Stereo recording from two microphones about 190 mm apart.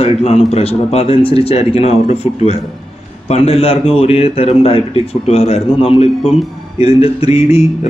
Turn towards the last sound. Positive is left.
turn(degrees=35)  # may be behind; listen again after turning